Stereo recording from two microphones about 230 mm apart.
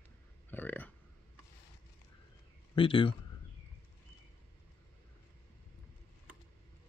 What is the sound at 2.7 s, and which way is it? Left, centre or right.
Speech, left.